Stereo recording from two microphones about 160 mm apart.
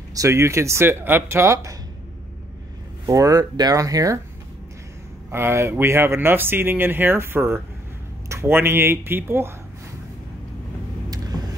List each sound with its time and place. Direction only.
0.1 s speech: 20° right (ahead or behind)
3.1 s speech: 20° right (ahead or behind)
5.3 s speech: 15° right (ahead or behind)